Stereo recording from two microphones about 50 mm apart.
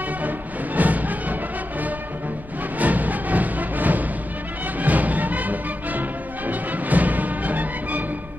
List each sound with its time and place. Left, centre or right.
0.7 s music: right